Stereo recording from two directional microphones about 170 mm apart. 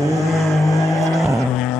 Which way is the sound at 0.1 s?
Centre (ahead or behind).